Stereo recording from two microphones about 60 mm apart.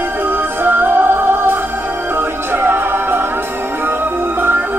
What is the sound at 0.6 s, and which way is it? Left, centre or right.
Music, right.